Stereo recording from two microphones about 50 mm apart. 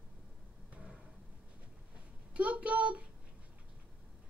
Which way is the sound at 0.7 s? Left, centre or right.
Centre.